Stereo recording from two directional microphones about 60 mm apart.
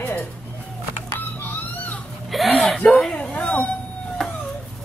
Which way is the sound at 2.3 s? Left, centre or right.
Centre.